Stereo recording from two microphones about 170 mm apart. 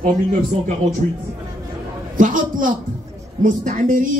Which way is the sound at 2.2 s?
50° right (ahead or behind).